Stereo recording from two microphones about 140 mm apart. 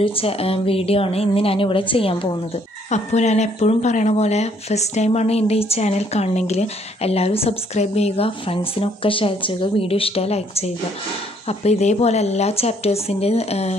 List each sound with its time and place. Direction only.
0.0 s speech: 40° left (ahead or behind)
2.9 s speech: 55° left (ahead or behind)